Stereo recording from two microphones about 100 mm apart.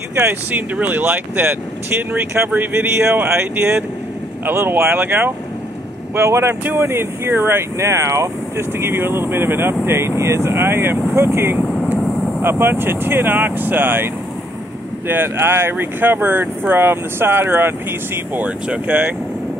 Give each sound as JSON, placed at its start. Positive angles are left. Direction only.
{"t": 0.1, "sound": "speech", "side_deg": -20}
{"t": 3.1, "sound": "speech", "side_deg": -10}
{"t": 3.3, "sound": "speech", "side_deg": -20}
{"t": 11.6, "sound": "vehicle", "side_deg": 10}
{"t": 12.4, "sound": "speech", "side_deg": -20}